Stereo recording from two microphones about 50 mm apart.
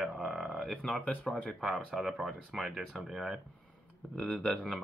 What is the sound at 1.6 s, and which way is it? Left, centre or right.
Speech, centre.